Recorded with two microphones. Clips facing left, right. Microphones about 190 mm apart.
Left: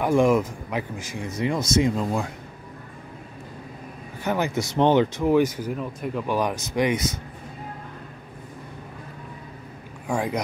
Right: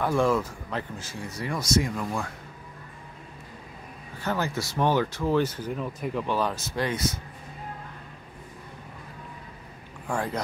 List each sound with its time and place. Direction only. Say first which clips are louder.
0.0 s speech: left 5 dB; 15° left (ahead or behind)
4.2 s speech: left 4 dB; 15° left (ahead or behind); by 6.2 s centre (ahead or behind)
6.2 s speech: left 5 dB; 15° left (ahead or behind)
10.0 s speech: left 4 dB; 15° left (ahead or behind)